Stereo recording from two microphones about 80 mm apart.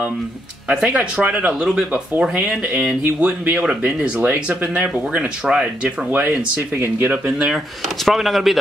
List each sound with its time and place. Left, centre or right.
0.7 s speech: centre
6.8 s speech: right
7.2 s speech: centre